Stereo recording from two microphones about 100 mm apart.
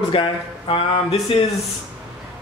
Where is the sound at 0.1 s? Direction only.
60° left (ahead or behind).